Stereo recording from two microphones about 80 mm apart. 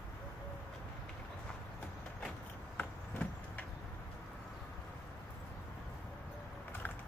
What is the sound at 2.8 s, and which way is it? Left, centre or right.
Vehicle, centre.